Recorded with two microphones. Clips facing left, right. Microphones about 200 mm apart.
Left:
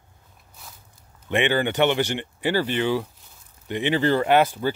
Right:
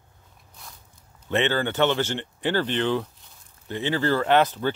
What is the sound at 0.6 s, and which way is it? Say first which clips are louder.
Walk: even; 5° left (ahead or behind).